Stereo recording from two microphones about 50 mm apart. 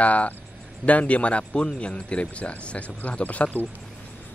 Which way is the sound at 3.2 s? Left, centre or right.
Left.